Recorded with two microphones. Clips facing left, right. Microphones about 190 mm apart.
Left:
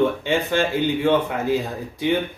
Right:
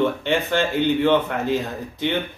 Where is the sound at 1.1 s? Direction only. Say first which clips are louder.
Even; 10° left (ahead or behind).